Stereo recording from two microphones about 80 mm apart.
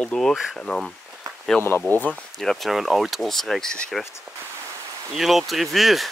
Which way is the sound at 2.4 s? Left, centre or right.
Centre.